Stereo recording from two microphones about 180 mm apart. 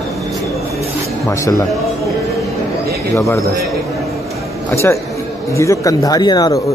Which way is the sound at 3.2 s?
15° left (ahead or behind).